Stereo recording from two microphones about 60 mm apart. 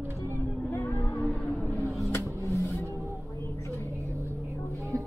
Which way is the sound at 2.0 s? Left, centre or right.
Left.